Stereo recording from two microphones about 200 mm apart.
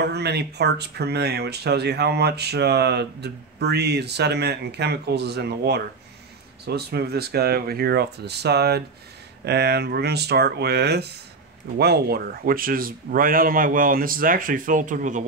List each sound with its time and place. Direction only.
0.0 s speech: 55° right (ahead or behind); by 15.2 s 40° right (ahead or behind)